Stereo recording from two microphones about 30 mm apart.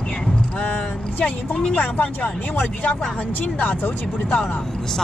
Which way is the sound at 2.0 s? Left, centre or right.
Left.